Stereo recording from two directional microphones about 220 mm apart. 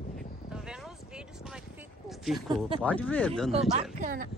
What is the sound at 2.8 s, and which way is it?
Speech, 5° left (ahead or behind).